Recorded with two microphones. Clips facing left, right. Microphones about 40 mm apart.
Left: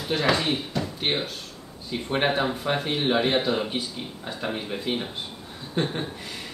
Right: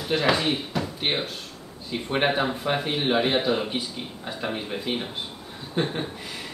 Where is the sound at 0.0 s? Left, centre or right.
Centre.